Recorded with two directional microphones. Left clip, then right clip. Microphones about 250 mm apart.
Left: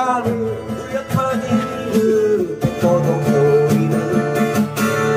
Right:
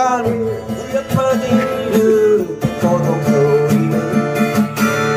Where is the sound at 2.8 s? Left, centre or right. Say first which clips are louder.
Even; centre.